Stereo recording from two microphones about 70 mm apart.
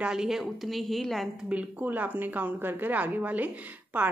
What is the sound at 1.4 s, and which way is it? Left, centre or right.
A woman's voice, centre.